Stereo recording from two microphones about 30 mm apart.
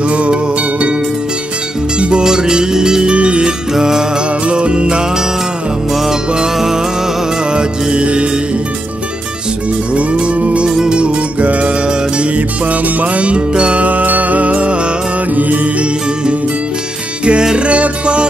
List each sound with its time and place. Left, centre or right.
0.1 s music: right
2.0 s music: right
2.2 s music: right
3.7 s music: centre
4.5 s music: right
7.5 s music: right
10.1 s music: right
10.7 s music: right
11.0 s music: right
13.8 s music: right
15.3 s music: right
17.2 s music: right